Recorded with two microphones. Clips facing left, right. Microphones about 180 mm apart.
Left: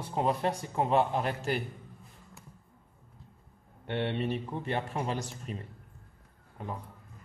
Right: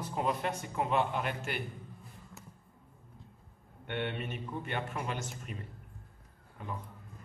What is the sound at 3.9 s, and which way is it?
A man's voice, 30° left (ahead or behind).